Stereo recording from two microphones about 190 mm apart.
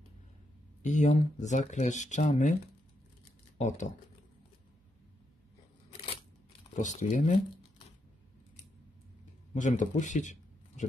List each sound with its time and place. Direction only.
0.8 s speech: 35° left (ahead or behind)
3.5 s speech: 40° left (ahead or behind)
6.7 s speech: 40° left (ahead or behind)
9.5 s speech: 40° left (ahead or behind)